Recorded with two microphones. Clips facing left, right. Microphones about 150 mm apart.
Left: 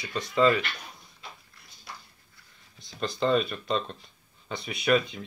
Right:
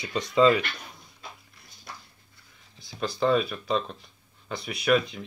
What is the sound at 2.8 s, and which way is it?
Speech, 5° right (ahead or behind).